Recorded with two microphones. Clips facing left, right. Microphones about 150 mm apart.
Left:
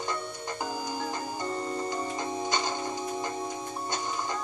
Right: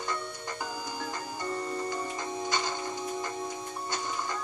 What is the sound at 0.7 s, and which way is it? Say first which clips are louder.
Music: left 4 dB; 40° left (ahead or behind).